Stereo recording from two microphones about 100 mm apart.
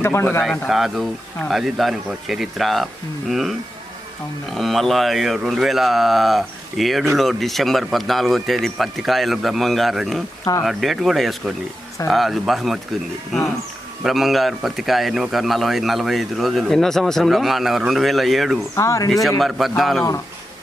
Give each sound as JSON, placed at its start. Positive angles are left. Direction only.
{"t": 0.0, "sound": "a man's voice", "side_deg": 25}
{"t": 0.7, "sound": "speech", "side_deg": 0}
{"t": 14.0, "sound": "speech", "side_deg": 0}
{"t": 18.8, "sound": "speech", "side_deg": 30}
{"t": 19.2, "sound": "speech", "side_deg": 0}